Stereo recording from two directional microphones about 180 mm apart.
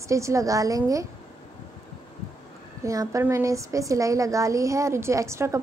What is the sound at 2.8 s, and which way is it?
A woman's voice, 15° right (ahead or behind).